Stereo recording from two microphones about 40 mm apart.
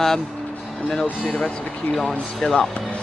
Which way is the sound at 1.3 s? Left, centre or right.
Left.